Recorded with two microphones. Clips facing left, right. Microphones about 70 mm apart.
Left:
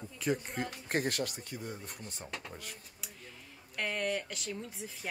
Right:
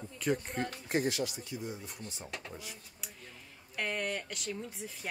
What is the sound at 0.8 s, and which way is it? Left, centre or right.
Speech, left.